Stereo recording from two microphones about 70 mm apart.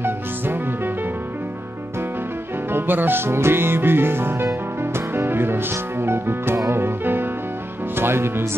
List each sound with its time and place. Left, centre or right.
2.7 s speech: right
4.9 s music: right
7.9 s speech: right